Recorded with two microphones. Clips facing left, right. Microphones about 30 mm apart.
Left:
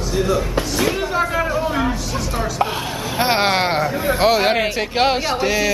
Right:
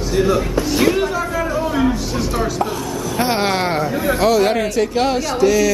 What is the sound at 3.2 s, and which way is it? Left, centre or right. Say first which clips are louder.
Speech: left 1 dB; left.